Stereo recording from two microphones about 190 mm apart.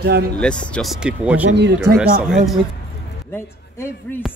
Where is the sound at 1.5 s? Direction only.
65° right (ahead or behind).